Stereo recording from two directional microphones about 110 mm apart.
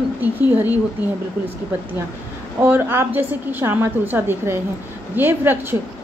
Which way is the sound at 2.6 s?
20° right (ahead or behind).